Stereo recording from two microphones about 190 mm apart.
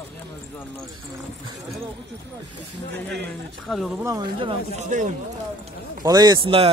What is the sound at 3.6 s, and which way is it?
Speech, centre (ahead or behind).